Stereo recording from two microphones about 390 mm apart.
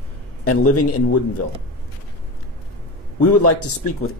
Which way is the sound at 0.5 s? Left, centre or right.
Left.